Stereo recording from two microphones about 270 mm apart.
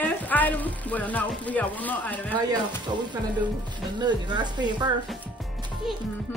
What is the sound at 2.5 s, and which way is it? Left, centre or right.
A child's voice, centre.